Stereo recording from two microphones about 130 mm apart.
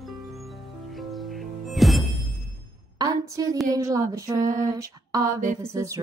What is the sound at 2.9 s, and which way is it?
Speech, 25° right (ahead or behind).